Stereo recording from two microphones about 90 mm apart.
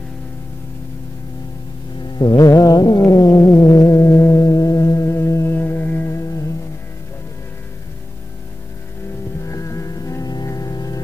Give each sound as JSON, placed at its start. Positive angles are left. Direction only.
{"t": 2.1, "sound": "music", "side_deg": 50}
{"t": 9.4, "sound": "music", "side_deg": 35}